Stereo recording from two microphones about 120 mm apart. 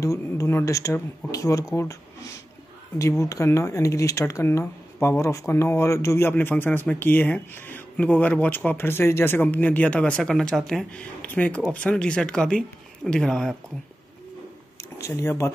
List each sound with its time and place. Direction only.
0.0 s speech: 25° left (ahead or behind); by 13.6 s 5° left (ahead or behind)
14.8 s speech: 25° left (ahead or behind)